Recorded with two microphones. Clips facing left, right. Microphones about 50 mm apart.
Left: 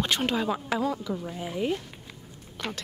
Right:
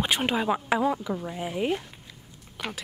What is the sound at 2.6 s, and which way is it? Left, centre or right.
Speech, centre.